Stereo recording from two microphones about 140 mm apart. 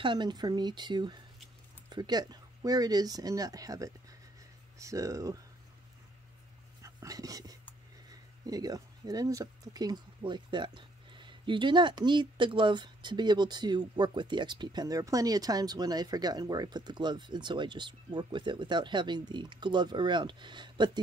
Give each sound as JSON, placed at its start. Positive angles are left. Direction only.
{"t": 0.0, "sound": "speech", "side_deg": -35}
{"t": 6.8, "sound": "dog", "side_deg": -25}
{"t": 8.1, "sound": "speech", "side_deg": -25}